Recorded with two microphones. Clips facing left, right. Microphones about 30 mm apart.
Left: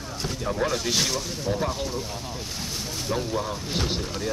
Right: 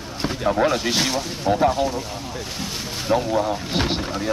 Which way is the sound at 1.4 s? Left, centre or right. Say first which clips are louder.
Right 10 dB; right.